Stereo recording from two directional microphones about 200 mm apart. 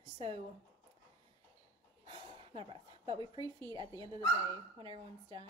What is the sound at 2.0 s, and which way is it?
A woman's voice, 25° right (ahead or behind).